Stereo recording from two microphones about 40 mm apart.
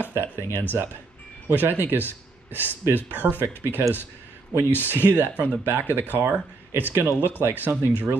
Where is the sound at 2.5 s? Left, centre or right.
Left.